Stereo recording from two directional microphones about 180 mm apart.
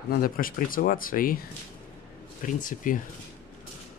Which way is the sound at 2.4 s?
45° left (ahead or behind).